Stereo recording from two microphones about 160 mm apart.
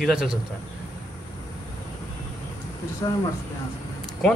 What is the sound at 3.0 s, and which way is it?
Speech, 25° left (ahead or behind).